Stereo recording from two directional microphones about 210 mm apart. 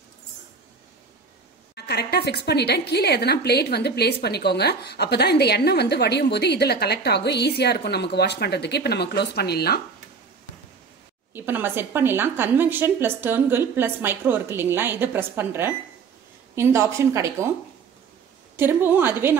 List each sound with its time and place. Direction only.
1.8 s a woman's voice: 50° left (ahead or behind)
11.3 s a woman's voice: 10° right (ahead or behind)
18.6 s a woman's voice: 10° right (ahead or behind)